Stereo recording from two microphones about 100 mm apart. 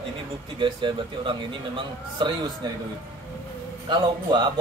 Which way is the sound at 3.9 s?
50° right (ahead or behind).